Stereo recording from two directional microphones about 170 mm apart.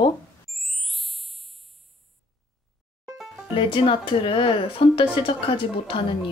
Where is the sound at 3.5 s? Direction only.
30° left (ahead or behind).